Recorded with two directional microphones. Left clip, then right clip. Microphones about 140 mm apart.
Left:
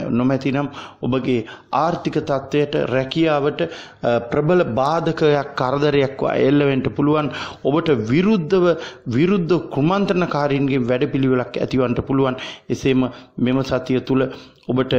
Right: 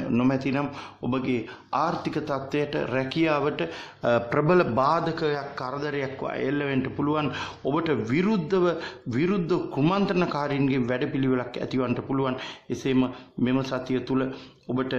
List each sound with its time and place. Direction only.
0.3 s speech: 35° left (ahead or behind); by 5.1 s 20° left (ahead or behind)
5.1 s speech: 45° left (ahead or behind)